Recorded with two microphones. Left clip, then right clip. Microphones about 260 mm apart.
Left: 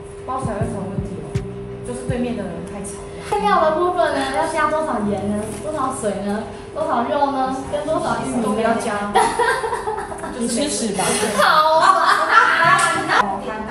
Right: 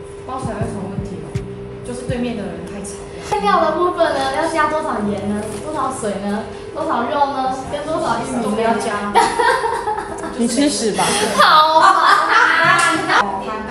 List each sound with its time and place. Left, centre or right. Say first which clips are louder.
3.4 s a woman's voice: right 1 dB; centre
10.3 s chuckle: right 5 dB; centre